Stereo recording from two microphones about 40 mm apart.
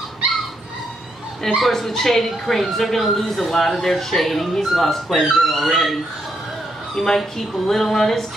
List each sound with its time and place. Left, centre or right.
1.6 s speech: centre
7.0 s speech: centre